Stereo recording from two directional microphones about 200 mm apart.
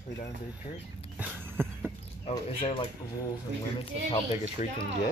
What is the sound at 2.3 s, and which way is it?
Speech, 25° left (ahead or behind).